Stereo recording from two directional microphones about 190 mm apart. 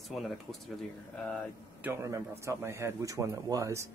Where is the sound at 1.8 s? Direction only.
10° right (ahead or behind).